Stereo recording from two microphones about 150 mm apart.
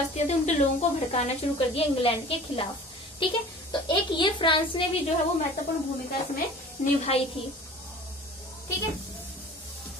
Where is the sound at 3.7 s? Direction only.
30° left (ahead or behind).